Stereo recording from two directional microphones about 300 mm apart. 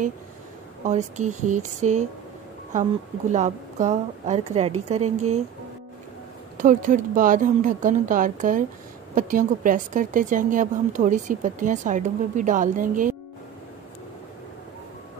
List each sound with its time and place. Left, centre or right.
0.8 s speech: right
6.6 s speech: right